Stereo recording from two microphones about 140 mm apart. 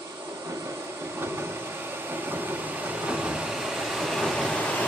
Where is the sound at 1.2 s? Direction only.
15° right (ahead or behind); by 4.9 s 5° left (ahead or behind).